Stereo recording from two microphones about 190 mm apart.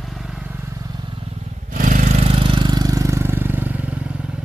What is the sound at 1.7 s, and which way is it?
Vehicle, 45° right (ahead or behind).